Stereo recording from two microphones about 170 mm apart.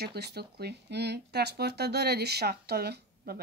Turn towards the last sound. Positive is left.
turn(degrees=-65)  # may be behind; listen again after turning